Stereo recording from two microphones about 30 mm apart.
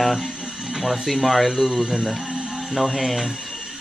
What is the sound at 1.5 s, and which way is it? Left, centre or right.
Speech, centre.